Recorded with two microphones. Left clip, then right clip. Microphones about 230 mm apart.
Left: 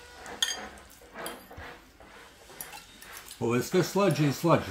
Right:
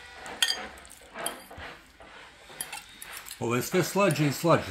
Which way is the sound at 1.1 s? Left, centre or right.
Right.